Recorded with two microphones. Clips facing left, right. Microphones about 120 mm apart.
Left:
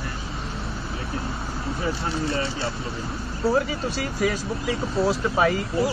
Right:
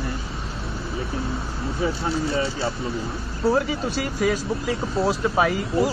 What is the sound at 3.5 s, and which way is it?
Speech, centre (ahead or behind).